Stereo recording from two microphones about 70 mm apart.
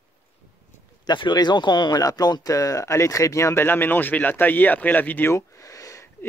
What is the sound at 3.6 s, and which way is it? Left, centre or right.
Speech, left.